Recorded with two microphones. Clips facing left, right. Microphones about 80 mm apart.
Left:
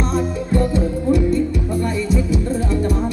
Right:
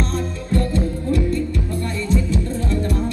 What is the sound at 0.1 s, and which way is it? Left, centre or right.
Music, centre.